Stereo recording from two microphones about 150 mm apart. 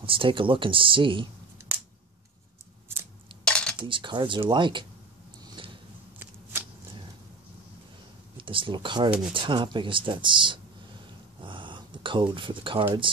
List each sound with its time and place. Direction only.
0.0 s speech: 35° right (ahead or behind)
3.4 s cutlery: 5° left (ahead or behind)
3.8 s speech: 35° right (ahead or behind)
5.6 s a sound: 35° right (ahead or behind)
6.1 s shuffling cards: 10° right (ahead or behind)
8.4 s speech: 35° right (ahead or behind)
11.4 s a sound: 35° right (ahead or behind)